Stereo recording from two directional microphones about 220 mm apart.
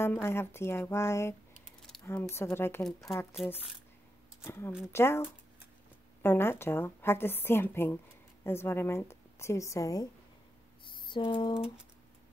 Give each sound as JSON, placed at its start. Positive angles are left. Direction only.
{"t": 0.0, "sound": "a woman's voice", "side_deg": 10}
{"t": 4.5, "sound": "a woman's voice", "side_deg": 10}
{"t": 6.2, "sound": "a woman's voice", "side_deg": 10}
{"t": 10.9, "sound": "a sound", "side_deg": 20}